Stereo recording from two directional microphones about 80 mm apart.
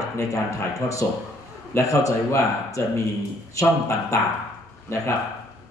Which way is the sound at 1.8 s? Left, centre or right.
Left.